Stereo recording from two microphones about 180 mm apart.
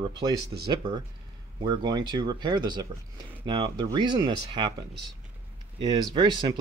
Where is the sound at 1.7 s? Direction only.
25° right (ahead or behind).